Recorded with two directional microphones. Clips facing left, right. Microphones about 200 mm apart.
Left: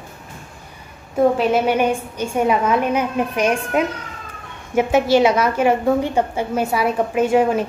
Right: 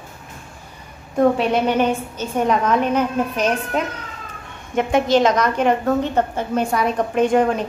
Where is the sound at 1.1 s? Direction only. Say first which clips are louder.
Left 1 dB; 5° left (ahead or behind).